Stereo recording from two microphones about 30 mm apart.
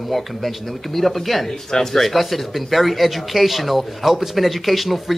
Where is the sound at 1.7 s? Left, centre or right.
Centre.